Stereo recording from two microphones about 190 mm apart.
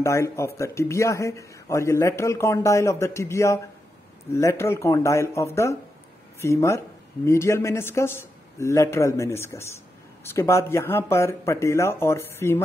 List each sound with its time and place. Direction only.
0.0 s speech: 15° left (ahead or behind)